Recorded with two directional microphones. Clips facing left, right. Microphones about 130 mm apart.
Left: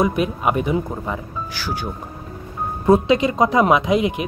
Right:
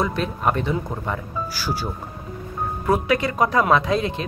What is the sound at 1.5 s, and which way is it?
Speech, 10° right (ahead or behind).